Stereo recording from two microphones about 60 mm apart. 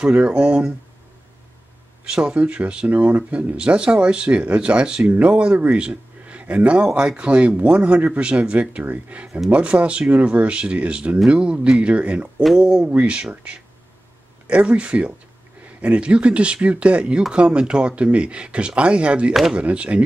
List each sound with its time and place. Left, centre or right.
0.0 s speech: centre
2.0 s speech: centre